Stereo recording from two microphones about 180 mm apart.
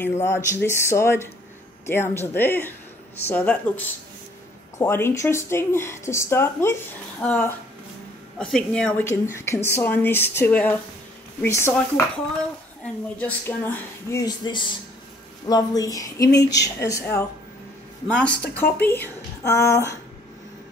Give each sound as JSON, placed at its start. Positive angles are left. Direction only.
{"t": 0.0, "sound": "speech", "side_deg": 15}
{"t": 12.8, "sound": "speech", "side_deg": 10}